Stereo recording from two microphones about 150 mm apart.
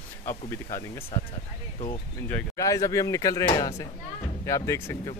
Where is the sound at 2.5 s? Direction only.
20° left (ahead or behind).